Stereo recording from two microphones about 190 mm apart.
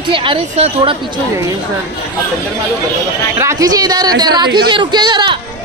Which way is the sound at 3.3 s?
15° right (ahead or behind).